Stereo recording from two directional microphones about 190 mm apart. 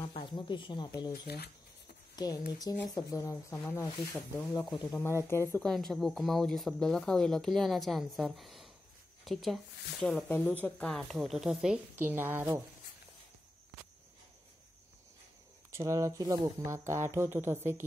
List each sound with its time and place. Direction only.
0.1 s speech: 25° left (ahead or behind)
1.1 s speech: 55° left (ahead or behind)
2.1 s speech: 20° left (ahead or behind)
5.7 s speech: centre (ahead or behind)
15.7 s speech: 15° right (ahead or behind)